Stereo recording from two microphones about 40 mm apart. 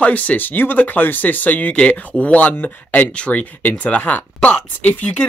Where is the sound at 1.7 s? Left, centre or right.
Left.